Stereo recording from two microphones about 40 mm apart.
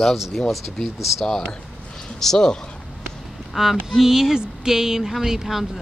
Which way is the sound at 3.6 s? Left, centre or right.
Centre.